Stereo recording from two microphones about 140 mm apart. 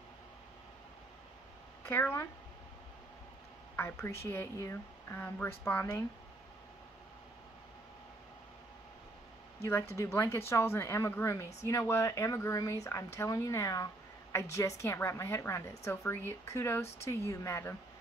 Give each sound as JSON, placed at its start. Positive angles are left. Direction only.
{"t": 1.9, "sound": "speech", "side_deg": 15}
{"t": 3.7, "sound": "speech", "side_deg": 15}
{"t": 9.7, "sound": "speech", "side_deg": 20}